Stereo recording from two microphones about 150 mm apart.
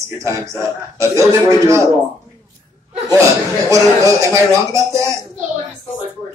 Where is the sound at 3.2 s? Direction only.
20° right (ahead or behind).